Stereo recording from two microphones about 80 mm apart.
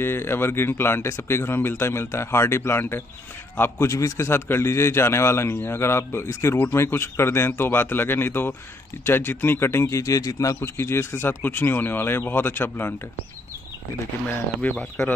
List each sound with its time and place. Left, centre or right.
0.0 s a man's voice: left
10.6 s speech: left
14.2 s speech: centre